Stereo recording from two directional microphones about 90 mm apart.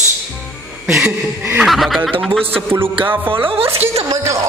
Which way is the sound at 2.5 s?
25° right (ahead or behind).